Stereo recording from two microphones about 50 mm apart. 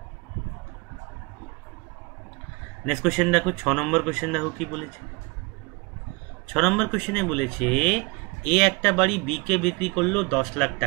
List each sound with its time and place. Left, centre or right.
2.8 s speech: centre
6.4 s speech: centre